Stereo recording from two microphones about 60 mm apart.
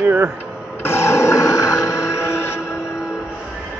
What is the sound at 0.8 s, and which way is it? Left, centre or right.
Music, left.